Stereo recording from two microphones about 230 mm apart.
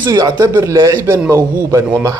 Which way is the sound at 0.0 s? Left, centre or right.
Centre.